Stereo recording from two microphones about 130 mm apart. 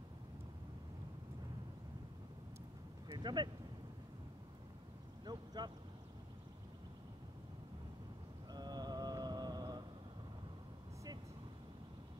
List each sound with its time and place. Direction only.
3.1 s a sound: 35° right (ahead or behind)
5.2 s vehicle: 35° right (ahead or behind)
8.5 s music: 30° right (ahead or behind)